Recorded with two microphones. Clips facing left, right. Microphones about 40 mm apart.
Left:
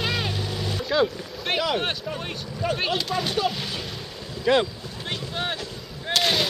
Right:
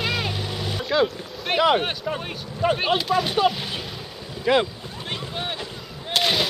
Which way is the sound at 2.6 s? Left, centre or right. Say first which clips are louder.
Right 5 dB; right.